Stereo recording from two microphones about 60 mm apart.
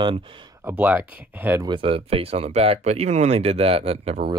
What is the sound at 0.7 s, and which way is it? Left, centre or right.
Speech, right.